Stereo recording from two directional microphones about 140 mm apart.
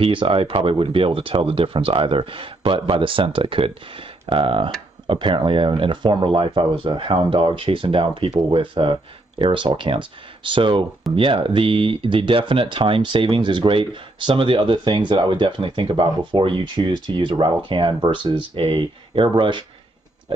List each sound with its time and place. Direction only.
0.0 s speech: 40° right (ahead or behind)